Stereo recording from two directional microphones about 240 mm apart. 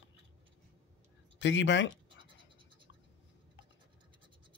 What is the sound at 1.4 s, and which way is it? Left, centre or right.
Speech, left.